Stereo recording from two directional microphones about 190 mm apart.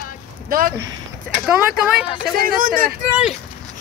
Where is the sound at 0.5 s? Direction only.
50° right (ahead or behind).